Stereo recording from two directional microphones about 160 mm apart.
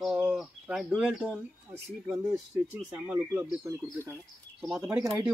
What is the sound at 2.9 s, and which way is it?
Speech, 10° right (ahead or behind).